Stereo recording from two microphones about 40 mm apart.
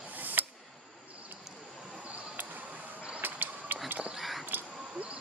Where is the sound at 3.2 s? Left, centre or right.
Right.